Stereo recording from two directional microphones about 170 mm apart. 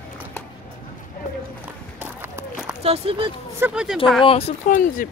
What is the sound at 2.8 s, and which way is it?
Speech, 35° right (ahead or behind).